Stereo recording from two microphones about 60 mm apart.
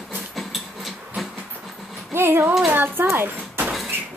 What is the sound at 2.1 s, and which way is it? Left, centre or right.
A child's voice, right.